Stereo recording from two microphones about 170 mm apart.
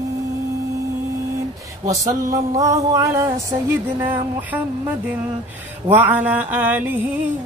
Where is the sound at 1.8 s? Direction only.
20° right (ahead or behind).